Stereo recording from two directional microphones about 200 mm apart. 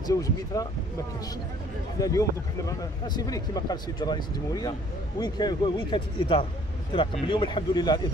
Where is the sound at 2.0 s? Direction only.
15° left (ahead or behind).